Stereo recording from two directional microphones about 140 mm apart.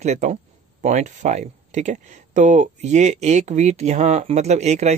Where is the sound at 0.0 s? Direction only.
55° right (ahead or behind).